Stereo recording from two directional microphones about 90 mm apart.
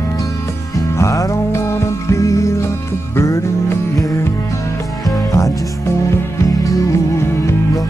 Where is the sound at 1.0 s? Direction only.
35° left (ahead or behind).